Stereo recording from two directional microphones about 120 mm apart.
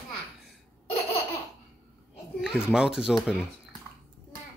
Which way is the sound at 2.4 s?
5° right (ahead or behind).